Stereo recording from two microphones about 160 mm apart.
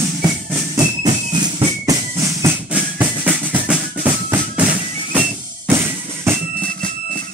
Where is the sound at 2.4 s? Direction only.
10° right (ahead or behind).